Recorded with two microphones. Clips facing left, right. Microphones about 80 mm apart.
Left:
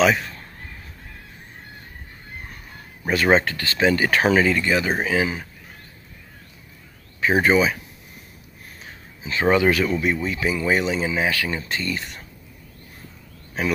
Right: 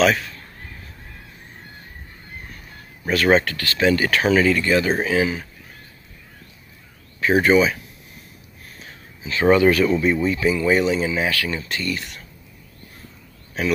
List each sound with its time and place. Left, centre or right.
3.1 s speech: centre
7.2 s speech: centre
9.2 s speech: centre
11.1 s speech: centre